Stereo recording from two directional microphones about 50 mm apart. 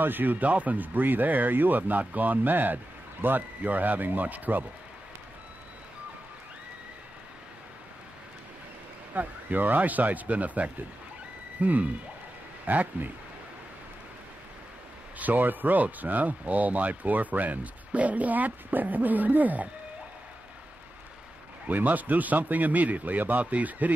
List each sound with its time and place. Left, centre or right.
0.0 s speech: right
9.1 s speech: right
15.1 s speech: right
21.6 s speech: right